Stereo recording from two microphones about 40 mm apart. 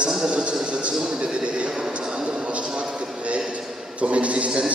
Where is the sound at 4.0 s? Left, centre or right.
Right.